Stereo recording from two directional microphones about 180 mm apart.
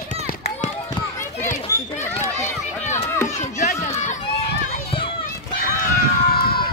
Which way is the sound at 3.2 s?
40° left (ahead or behind).